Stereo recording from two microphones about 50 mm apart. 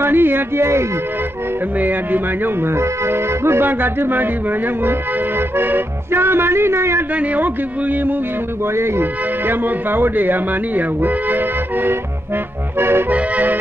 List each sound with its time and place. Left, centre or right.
0.0 s music: right
1.8 s music: right
2.8 s music: right
5.6 s music: right
7.2 s music: right
9.5 s music: right
12.7 s accordion: right
13.1 s accordion: right